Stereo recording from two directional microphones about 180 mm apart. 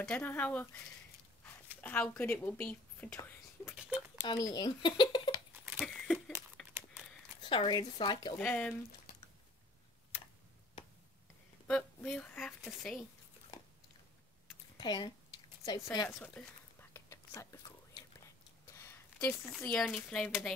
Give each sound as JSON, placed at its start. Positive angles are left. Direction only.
{"t": 0.0, "sound": "speech", "side_deg": 10}
{"t": 4.5, "sound": "speech", "side_deg": 25}
{"t": 5.7, "sound": "a sound", "side_deg": 0}
{"t": 6.6, "sound": "crumpling", "side_deg": 0}
{"t": 7.4, "sound": "speech", "side_deg": 25}
{"t": 8.4, "sound": "a woman's voice", "side_deg": 5}
{"t": 11.6, "sound": "a woman's voice", "side_deg": 5}
{"t": 14.8, "sound": "speech", "side_deg": 25}
{"t": 16.2, "sound": "whispering", "side_deg": 10}
{"t": 18.7, "sound": "a sound", "side_deg": 15}
{"t": 19.6, "sound": "a woman's voice", "side_deg": 5}